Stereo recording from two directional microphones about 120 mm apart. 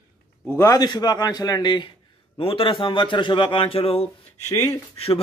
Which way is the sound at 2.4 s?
50° left (ahead or behind).